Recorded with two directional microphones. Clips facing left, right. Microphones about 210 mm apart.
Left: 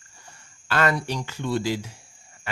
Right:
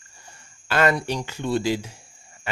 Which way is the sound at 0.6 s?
20° right (ahead or behind).